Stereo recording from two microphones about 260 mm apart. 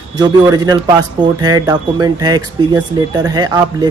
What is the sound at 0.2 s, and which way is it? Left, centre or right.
Speech, centre.